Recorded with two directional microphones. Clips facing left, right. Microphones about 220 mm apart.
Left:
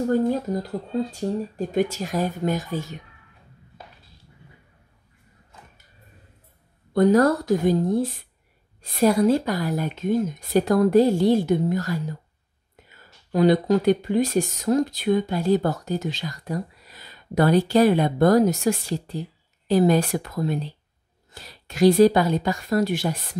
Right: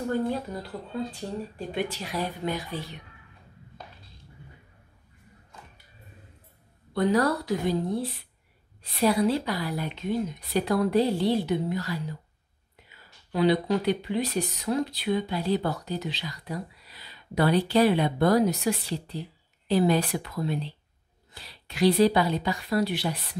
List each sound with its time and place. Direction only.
0.1 s speech: 40° left (ahead or behind)
6.9 s speech: 45° left (ahead or behind)